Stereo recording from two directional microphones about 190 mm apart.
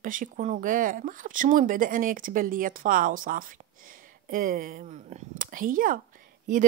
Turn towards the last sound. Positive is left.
turn(degrees=-45)  # may be behind; listen again after turning